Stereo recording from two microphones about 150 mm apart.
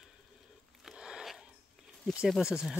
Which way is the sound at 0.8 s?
5° right (ahead or behind).